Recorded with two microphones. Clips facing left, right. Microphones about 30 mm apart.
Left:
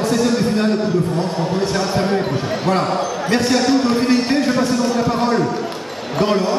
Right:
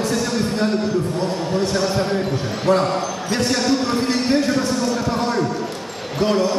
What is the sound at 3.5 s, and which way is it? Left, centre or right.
A man's voice, centre.